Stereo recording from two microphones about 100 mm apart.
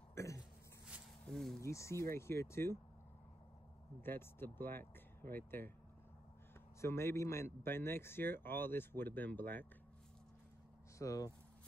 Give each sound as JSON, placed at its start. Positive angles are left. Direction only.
{"t": 0.1, "sound": "throat clearing", "side_deg": 30}
{"t": 1.2, "sound": "speech", "side_deg": 5}
{"t": 1.6, "sound": "speech", "side_deg": 30}
{"t": 4.0, "sound": "speech", "side_deg": 20}
{"t": 6.8, "sound": "speech", "side_deg": 25}
{"t": 11.0, "sound": "speech", "side_deg": 35}